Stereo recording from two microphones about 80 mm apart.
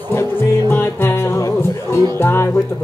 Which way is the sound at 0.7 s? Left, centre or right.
Left.